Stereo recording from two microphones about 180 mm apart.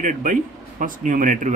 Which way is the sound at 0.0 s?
45° right (ahead or behind).